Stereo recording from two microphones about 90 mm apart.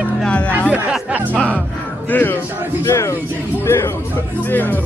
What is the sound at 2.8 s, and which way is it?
Speech, 30° left (ahead or behind).